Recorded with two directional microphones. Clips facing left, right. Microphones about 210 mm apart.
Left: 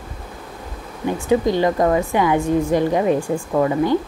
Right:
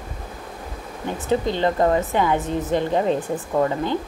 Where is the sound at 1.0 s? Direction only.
15° left (ahead or behind).